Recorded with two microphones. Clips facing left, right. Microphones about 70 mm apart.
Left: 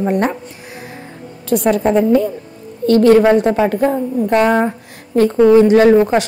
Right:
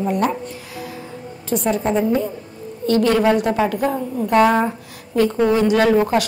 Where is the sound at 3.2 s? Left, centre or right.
Left.